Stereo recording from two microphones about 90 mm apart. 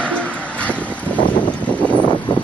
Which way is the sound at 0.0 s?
15° left (ahead or behind).